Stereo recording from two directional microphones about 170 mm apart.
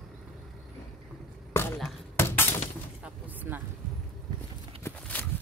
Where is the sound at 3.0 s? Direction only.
10° right (ahead or behind).